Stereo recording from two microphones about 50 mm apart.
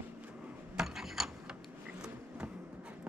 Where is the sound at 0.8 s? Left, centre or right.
Centre.